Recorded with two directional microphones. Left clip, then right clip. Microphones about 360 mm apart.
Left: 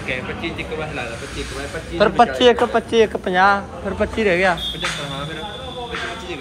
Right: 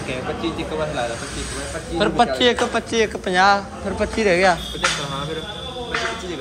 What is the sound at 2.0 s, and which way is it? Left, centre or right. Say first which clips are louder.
A man's voice: left 3 dB; centre.